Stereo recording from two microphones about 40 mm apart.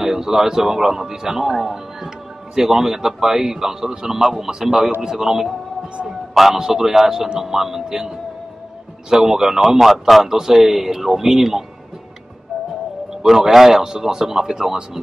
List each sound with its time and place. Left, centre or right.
0.0 s a man's voice: centre
9.1 s a man's voice: centre
13.2 s a man's voice: centre